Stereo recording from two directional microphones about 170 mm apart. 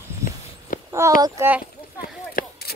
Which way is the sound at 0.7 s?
50° left (ahead or behind).